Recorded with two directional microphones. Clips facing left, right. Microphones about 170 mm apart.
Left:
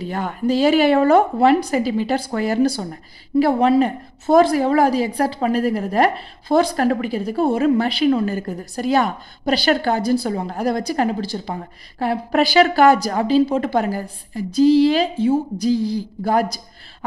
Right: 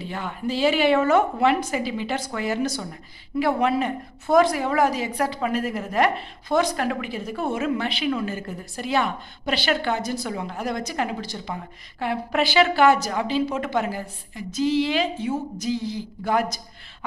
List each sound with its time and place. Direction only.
0.0 s a woman's voice: 40° left (ahead or behind)